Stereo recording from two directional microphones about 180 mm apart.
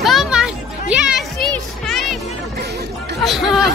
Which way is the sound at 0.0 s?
Centre (ahead or behind).